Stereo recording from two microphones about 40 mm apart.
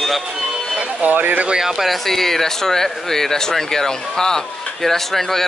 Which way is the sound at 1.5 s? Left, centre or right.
Centre.